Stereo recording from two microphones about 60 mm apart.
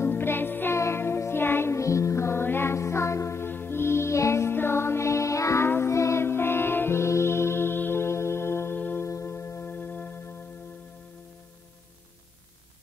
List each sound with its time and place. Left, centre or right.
0.0 s music: left
0.7 s music: left
1.8 s music: left
3.4 s music: left
5.7 s music: left
8.7 s music: left
9.0 s music: left
9.7 s music: left